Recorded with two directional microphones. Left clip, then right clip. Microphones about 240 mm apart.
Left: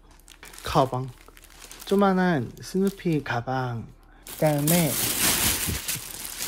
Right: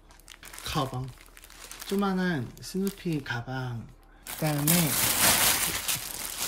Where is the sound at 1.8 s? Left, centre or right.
Left.